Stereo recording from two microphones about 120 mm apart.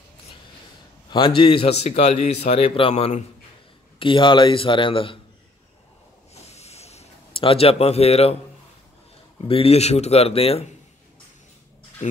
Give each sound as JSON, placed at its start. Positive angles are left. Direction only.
{"t": 1.1, "sound": "speech", "side_deg": 45}
{"t": 4.0, "sound": "a man's voice", "side_deg": 45}
{"t": 6.3, "sound": "a sound", "side_deg": 65}
{"t": 9.5, "sound": "speech", "side_deg": 55}